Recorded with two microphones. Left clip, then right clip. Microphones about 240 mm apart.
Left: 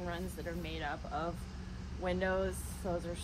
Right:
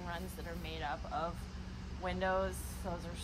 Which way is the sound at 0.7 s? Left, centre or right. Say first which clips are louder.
Right 2 dB; centre.